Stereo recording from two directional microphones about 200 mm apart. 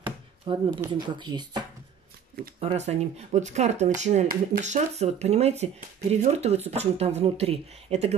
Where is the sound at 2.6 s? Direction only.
30° right (ahead or behind).